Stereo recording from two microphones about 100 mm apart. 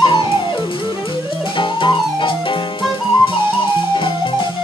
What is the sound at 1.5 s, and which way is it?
Music, 55° left (ahead or behind).